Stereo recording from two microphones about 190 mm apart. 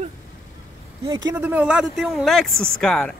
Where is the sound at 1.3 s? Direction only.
10° right (ahead or behind).